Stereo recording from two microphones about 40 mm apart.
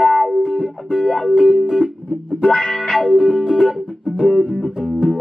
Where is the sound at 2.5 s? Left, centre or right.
Left.